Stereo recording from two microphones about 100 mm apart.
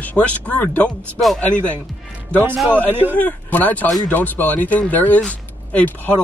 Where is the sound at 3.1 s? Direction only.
15° left (ahead or behind).